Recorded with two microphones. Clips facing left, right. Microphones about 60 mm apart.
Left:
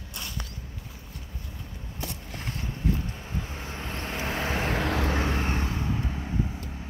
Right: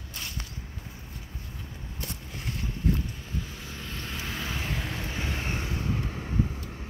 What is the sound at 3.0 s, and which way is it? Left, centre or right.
Vehicle, left.